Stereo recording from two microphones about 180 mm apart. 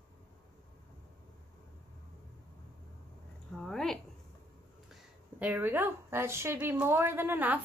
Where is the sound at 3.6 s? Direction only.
Centre (ahead or behind).